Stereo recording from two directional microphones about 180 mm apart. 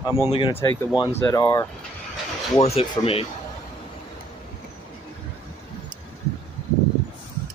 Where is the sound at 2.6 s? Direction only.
35° left (ahead or behind).